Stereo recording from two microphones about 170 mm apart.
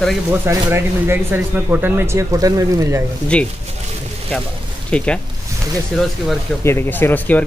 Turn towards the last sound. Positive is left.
turn(degrees=10)  # may be behind; listen again after turning